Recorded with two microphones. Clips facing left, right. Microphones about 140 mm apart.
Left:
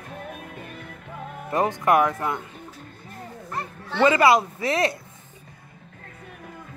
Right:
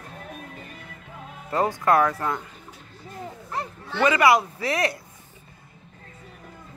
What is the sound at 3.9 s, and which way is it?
Speech, 25° left (ahead or behind).